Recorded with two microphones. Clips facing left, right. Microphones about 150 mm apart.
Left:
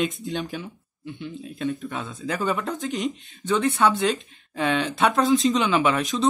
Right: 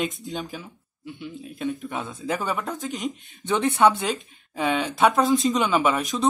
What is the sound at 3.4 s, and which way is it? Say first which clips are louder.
Speech: right 2 dB; 20° right (ahead or behind).